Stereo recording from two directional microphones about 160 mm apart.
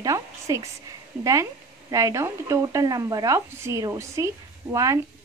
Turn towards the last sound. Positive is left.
turn(degrees=-20)  # may be behind; listen again after turning